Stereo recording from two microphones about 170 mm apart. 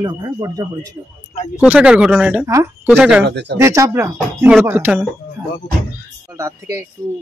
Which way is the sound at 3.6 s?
15° right (ahead or behind).